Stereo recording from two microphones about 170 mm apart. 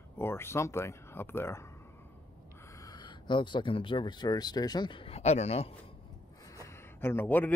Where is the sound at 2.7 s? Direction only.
25° left (ahead or behind).